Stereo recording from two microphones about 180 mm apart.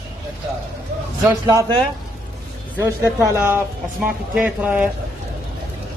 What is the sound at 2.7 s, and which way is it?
Speech, 10° right (ahead or behind).